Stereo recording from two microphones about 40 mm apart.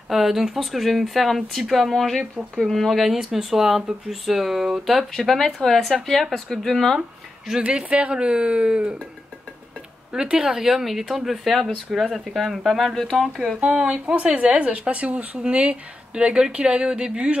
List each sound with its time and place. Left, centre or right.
0.1 s speech: centre
5.2 s speech: centre
7.7 s speech: right
10.1 s speech: centre
13.6 s speech: right